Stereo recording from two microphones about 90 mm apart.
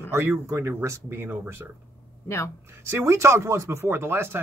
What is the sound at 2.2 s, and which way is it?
Speech, 30° left (ahead or behind).